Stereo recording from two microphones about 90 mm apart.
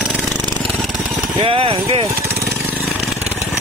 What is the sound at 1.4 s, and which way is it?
Speech, 90° right.